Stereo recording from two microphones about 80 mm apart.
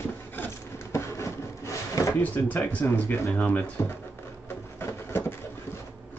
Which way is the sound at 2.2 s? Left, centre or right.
Left.